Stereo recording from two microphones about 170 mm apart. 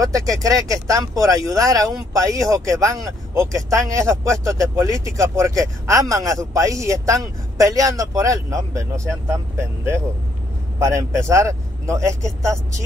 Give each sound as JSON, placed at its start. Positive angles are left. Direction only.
{"t": 0.0, "sound": "speech", "side_deg": -20}